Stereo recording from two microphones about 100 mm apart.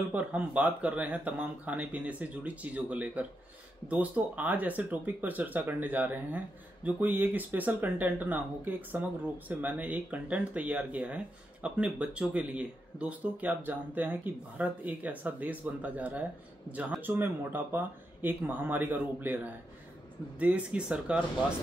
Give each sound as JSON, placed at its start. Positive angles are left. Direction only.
{"t": 0.1, "sound": "speech", "side_deg": -15}